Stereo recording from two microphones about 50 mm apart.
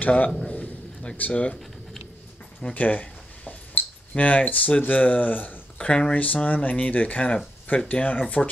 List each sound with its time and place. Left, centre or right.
0.0 s a man's voice: left
0.5 s a sound: left
2.7 s a sound: left
4.1 s speech: left
5.8 s speech: centre
6.1 s speech: left